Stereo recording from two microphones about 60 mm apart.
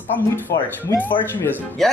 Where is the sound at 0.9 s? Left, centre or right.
Left.